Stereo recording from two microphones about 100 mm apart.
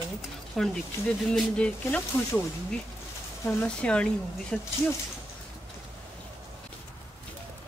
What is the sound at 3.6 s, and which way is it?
Speech, 10° left (ahead or behind).